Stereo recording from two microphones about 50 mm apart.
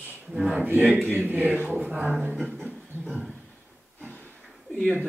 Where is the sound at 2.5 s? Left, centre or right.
Centre.